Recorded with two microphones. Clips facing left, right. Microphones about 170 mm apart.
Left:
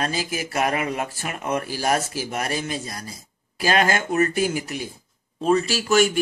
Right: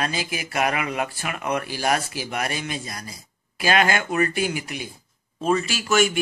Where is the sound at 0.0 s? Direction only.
40° left (ahead or behind).